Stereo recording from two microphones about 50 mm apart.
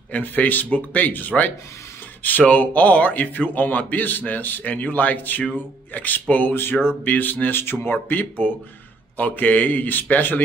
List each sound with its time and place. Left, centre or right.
0.2 s speech: left
6.5 s speech: left
7.1 s speech: left